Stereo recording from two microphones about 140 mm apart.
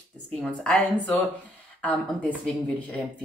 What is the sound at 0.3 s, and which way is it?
Speech, 5° left (ahead or behind).